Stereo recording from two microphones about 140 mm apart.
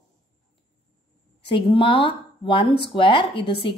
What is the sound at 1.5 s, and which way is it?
Speech, 40° left (ahead or behind).